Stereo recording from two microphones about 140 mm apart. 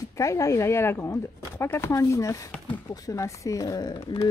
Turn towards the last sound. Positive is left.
turn(degrees=25)  # may be behind; listen again after turning